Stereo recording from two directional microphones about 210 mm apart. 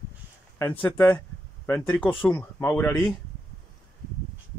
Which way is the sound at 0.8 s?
5° left (ahead or behind).